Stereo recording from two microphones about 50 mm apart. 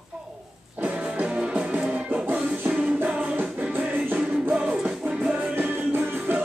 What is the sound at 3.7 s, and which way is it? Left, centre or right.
Music, right.